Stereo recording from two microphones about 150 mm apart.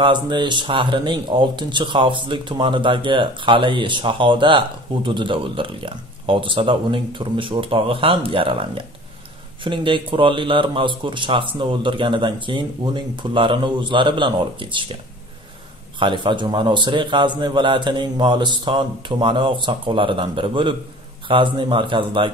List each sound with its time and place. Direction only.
0.0 s speech: 30° right (ahead or behind)
16.0 s speech: 30° right (ahead or behind)